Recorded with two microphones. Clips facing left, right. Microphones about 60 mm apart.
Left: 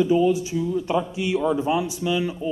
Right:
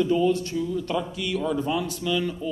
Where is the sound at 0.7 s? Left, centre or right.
Left.